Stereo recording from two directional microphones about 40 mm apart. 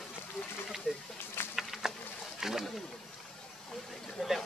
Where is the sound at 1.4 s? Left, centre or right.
Left.